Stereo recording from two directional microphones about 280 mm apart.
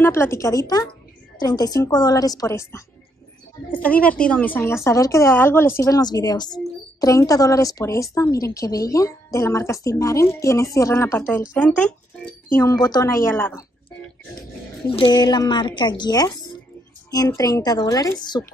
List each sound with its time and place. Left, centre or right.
0.0 s a woman's voice: centre
14.9 s a woman's voice: centre